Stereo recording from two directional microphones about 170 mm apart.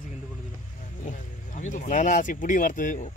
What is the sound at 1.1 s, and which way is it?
Speech, 45° left (ahead or behind).